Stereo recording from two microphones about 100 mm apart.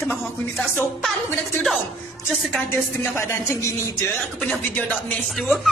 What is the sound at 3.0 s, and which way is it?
Speech, 25° left (ahead or behind).